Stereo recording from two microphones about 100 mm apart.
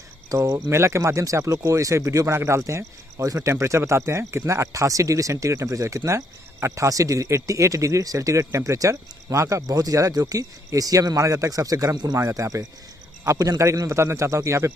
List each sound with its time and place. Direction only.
0.3 s a man's voice: 35° right (ahead or behind)